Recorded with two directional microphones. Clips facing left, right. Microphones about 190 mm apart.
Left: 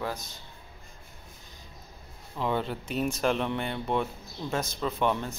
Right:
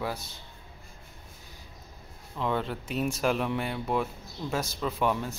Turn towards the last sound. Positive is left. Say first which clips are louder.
# even
turn(degrees=-5)  # may be behind; listen again after turning